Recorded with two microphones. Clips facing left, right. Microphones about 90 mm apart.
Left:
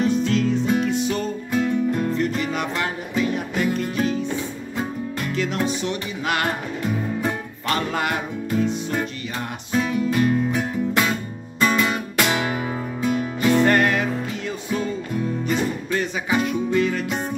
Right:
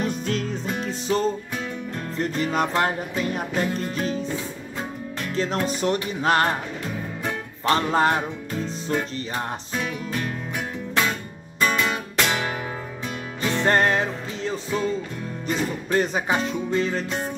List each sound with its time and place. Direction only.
0.0 s music: 45° right (ahead or behind)
5.3 s music: 35° right (ahead or behind)
7.6 s music: 30° right (ahead or behind)
9.7 s music: 5° left (ahead or behind)
13.7 s music: 30° right (ahead or behind)